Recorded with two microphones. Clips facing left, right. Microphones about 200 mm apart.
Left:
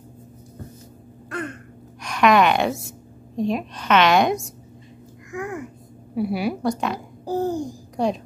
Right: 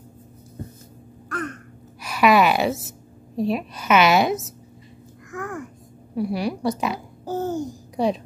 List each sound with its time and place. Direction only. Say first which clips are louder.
2.0 s a woman's voice: even; 5° right (ahead or behind)
5.3 s babbling: left 2 dB; 15° left (ahead or behind)
6.1 s a woman's voice: left 1 dB; 5° left (ahead or behind)
7.2 s babbling: left 2 dB; 35° left (ahead or behind)
7.5 s a child's voice: even; centre (ahead or behind)